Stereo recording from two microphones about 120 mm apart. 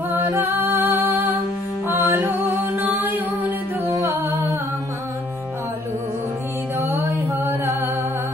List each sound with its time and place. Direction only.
0.1 s music: 15° right (ahead or behind)
6.9 s music: 20° right (ahead or behind)